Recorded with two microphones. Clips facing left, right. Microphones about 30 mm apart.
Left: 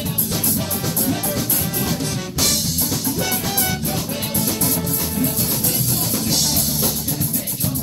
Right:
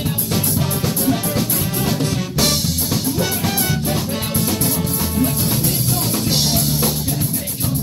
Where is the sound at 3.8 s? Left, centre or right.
Right.